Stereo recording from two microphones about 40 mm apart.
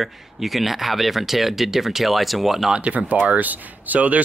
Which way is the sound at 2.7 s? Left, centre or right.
Right.